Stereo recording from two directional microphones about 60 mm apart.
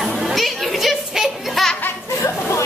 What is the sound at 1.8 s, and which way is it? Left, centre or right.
Laughter, left.